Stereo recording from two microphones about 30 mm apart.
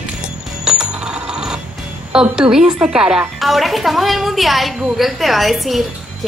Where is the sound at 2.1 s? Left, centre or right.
Right.